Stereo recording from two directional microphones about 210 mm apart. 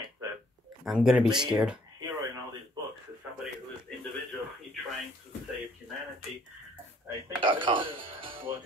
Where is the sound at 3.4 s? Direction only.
Centre (ahead or behind).